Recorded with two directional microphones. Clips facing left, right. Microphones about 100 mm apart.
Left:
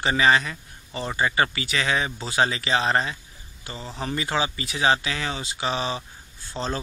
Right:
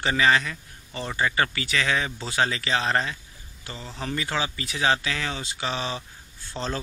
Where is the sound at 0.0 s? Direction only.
20° left (ahead or behind).